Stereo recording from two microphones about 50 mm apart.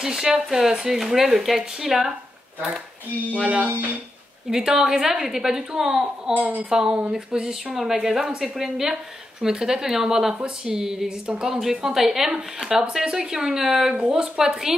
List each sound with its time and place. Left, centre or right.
0.0 s a woman's voice: centre
3.3 s music: right
4.5 s a woman's voice: centre
6.3 s speech: right
6.7 s a woman's voice: centre
7.7 s a woman's voice: centre
11.2 s music: right
11.7 s a woman's voice: centre